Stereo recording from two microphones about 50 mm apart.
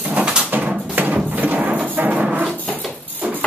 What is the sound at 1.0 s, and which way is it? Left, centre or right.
Music, right.